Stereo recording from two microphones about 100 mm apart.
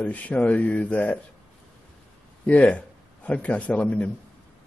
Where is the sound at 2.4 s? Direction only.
10° left (ahead or behind).